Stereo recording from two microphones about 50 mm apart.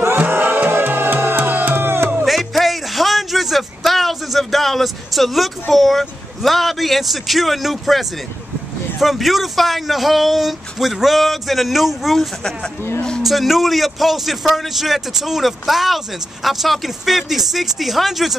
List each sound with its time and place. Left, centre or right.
0.3 s music: right
2.2 s a sound: centre
9.0 s speech: centre